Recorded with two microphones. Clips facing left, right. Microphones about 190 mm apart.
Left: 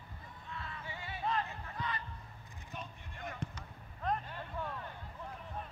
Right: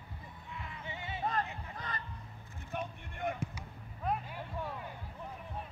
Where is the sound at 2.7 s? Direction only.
60° right (ahead or behind).